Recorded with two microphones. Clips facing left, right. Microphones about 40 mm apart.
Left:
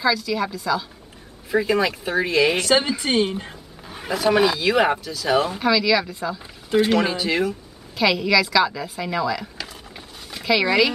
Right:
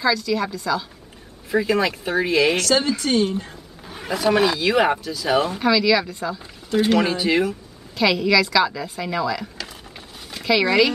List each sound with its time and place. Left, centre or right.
0.0 s speech: centre
2.5 s a woman's voice: centre
3.8 s a woman's voice: centre